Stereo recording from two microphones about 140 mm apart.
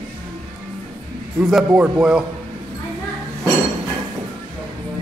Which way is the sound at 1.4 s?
5° right (ahead or behind).